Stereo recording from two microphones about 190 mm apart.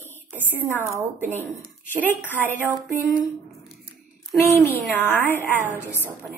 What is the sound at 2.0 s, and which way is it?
Speech, 10° left (ahead or behind).